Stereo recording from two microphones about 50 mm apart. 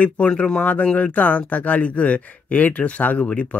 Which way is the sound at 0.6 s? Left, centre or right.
Left.